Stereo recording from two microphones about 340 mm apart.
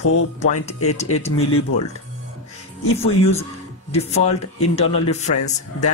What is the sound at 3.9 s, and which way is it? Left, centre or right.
Speech, centre.